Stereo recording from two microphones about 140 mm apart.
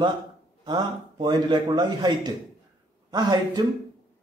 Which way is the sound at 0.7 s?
30° right (ahead or behind).